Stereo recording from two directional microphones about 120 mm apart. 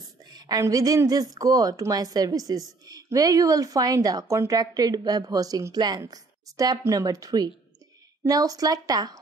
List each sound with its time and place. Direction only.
0.0 s a woman's voice: 35° right (ahead or behind)